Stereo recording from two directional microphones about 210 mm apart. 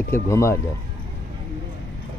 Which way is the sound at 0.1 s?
15° left (ahead or behind).